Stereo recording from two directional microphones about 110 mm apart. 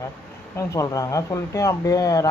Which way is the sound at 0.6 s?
30° left (ahead or behind).